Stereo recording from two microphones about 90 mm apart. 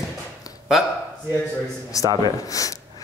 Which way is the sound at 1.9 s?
40° left (ahead or behind).